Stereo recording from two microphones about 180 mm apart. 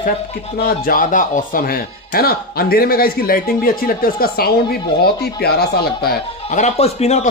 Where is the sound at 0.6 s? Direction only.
55° left (ahead or behind).